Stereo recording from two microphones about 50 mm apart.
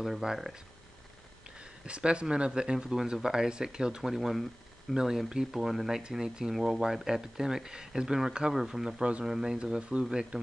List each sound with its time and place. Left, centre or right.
0.0 s speech: centre
1.9 s speech: right